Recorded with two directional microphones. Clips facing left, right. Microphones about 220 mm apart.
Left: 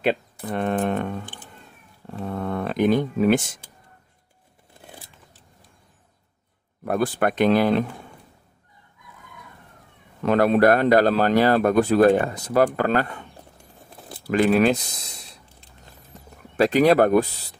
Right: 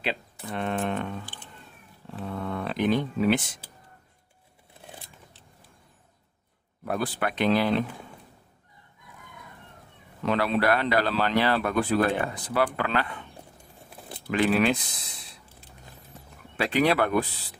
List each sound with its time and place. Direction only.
0.0 s speech: 50° left (ahead or behind)
6.8 s speech: 50° left (ahead or behind)
10.2 s speech: 50° left (ahead or behind)
14.2 s speech: 40° left (ahead or behind)
16.5 s speech: 40° left (ahead or behind)